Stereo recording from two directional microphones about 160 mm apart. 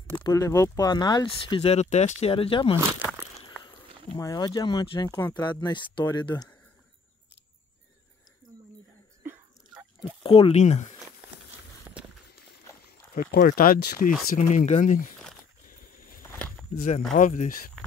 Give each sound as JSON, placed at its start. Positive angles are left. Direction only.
{"t": 0.2, "sound": "speech", "side_deg": 20}
{"t": 4.2, "sound": "speech", "side_deg": 20}
{"t": 9.2, "sound": "throat clearing", "side_deg": -10}
{"t": 10.2, "sound": "speech", "side_deg": 35}
{"t": 13.1, "sound": "speech", "side_deg": 65}
{"t": 14.3, "sound": "speech", "side_deg": 55}
{"t": 15.7, "sound": "a sound", "side_deg": 60}
{"t": 16.2, "sound": "a sound", "side_deg": 5}
{"t": 16.7, "sound": "speech", "side_deg": 50}